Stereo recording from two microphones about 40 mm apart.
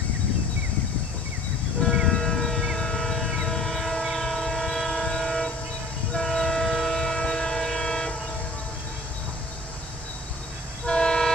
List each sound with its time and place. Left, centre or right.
2.0 s a sound: centre
2.8 s vehicle: centre
3.4 s train: centre
10.9 s vehicle: centre